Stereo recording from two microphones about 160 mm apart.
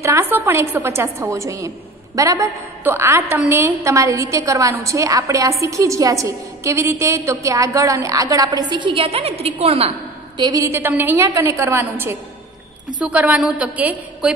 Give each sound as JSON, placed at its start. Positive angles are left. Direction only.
{"t": 0.0, "sound": "a woman's voice", "side_deg": -15}